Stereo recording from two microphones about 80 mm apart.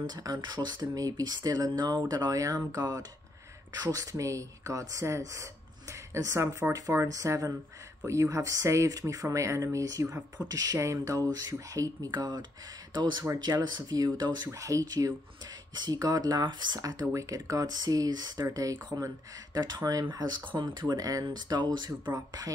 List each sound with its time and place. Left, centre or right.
0.1 s speech: right
14.5 s speech: right
22.1 s speech: right